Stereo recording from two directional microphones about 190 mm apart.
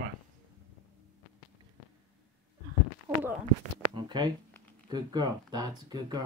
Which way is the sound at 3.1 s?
15° right (ahead or behind).